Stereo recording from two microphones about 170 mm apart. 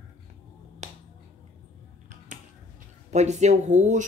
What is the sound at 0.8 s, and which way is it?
Finger snapping, 40° right (ahead or behind).